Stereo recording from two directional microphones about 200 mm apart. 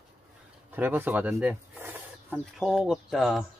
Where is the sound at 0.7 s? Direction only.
10° right (ahead or behind).